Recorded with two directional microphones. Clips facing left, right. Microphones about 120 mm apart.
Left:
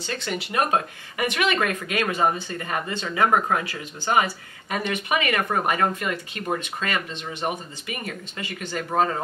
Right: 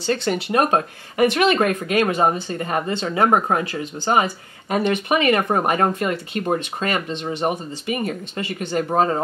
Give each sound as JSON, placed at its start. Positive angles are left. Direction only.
{"t": 0.0, "sound": "speech", "side_deg": -35}